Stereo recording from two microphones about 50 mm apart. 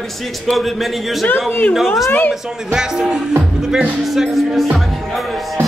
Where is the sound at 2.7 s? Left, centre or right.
Centre.